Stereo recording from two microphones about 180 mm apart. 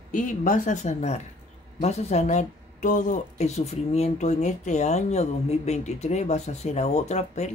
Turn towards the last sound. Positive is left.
turn(degrees=40)  # may be behind; listen again after turning